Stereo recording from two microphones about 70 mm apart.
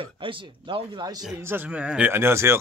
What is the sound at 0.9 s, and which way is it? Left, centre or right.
Speech, right.